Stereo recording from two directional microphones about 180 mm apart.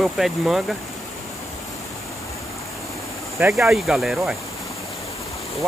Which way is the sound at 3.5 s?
Centre (ahead or behind).